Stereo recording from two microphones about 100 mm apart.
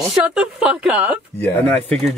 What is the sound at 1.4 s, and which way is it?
Speech, 15° left (ahead or behind).